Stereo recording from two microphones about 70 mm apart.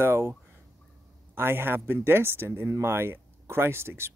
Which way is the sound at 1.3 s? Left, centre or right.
Right.